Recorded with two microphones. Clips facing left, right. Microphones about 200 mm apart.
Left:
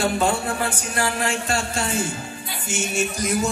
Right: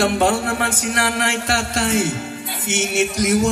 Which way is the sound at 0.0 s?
90° right.